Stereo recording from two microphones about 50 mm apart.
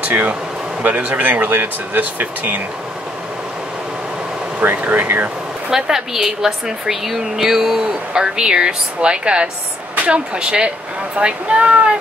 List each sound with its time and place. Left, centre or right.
0.0 s speech: right
4.6 s speech: right
5.7 s speech: centre